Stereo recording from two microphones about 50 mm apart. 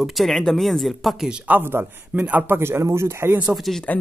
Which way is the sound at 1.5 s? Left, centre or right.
Right.